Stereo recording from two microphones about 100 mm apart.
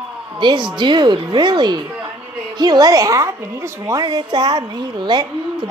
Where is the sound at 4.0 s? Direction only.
45° right (ahead or behind).